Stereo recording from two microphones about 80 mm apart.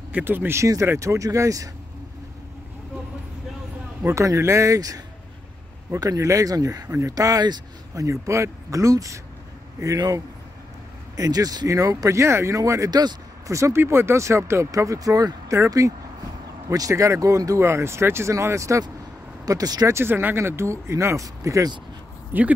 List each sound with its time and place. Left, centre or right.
0.1 s speech: right
0.6 s speech: right
4.1 s speech: right
19.9 s speech: right
22.3 s speech: right